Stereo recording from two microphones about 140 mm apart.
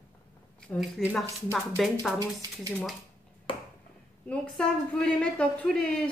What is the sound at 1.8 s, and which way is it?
Speech, centre (ahead or behind).